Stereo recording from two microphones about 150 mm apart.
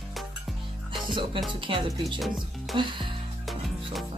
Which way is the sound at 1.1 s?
35° right (ahead or behind).